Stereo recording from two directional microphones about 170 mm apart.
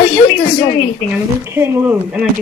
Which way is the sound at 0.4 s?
35° left (ahead or behind).